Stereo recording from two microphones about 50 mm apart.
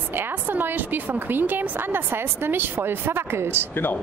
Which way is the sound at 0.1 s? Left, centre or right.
Right.